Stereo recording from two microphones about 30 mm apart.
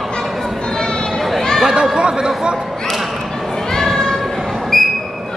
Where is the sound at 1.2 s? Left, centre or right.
Centre.